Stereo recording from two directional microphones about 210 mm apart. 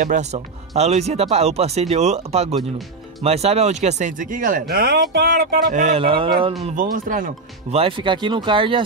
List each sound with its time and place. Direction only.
0.0 s speech: 35° right (ahead or behind)
6.6 s speech: 40° right (ahead or behind)
7.8 s speech: 25° right (ahead or behind)